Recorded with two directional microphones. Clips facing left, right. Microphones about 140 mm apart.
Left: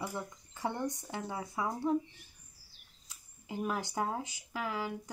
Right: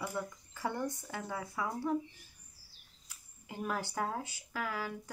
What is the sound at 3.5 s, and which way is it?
Speech, 20° left (ahead or behind).